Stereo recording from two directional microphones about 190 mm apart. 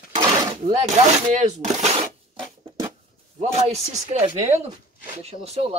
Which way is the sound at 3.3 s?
35° right (ahead or behind).